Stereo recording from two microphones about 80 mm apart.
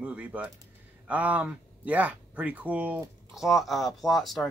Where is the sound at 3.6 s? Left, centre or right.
Centre.